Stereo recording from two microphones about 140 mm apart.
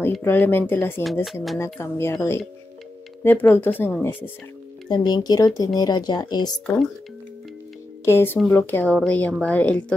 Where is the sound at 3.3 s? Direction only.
15° left (ahead or behind).